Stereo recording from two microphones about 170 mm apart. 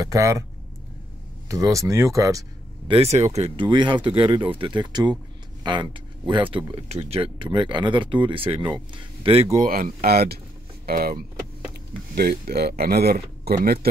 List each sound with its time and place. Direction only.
0.0 s speech: 20° right (ahead or behind)
1.5 s speech: 20° right (ahead or behind)
2.9 s speech: 40° right (ahead or behind)
3.6 s speech: 30° right (ahead or behind)
9.7 s speech: 60° right (ahead or behind)